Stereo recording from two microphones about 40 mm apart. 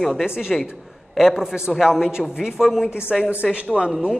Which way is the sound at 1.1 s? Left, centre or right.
Centre.